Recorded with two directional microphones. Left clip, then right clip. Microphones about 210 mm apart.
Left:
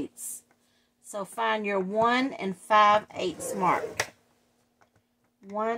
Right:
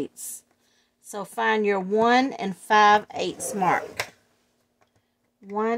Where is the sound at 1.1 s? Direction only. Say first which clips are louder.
Right 4 dB; 45° right (ahead or behind).